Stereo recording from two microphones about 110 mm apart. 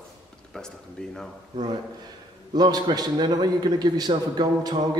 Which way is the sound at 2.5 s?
40° right (ahead or behind).